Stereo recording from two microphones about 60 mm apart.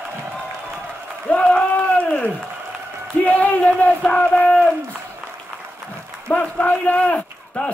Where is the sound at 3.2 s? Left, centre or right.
Left.